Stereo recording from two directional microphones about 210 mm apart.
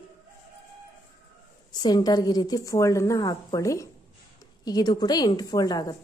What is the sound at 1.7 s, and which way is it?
A woman's voice, 20° left (ahead or behind).